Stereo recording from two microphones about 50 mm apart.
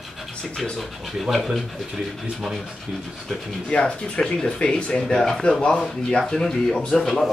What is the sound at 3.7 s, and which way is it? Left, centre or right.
Speech, left.